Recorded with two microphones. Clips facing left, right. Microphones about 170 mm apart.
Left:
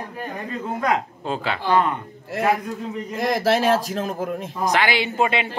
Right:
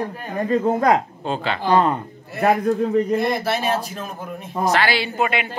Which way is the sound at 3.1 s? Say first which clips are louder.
Left 1 dB; 90° left.